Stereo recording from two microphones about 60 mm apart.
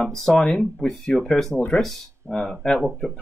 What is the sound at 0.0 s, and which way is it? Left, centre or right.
Speech, centre.